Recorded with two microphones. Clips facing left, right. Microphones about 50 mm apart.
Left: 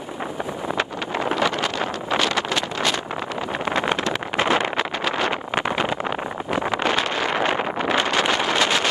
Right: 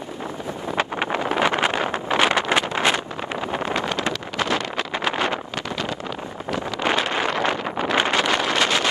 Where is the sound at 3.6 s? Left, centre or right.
Left.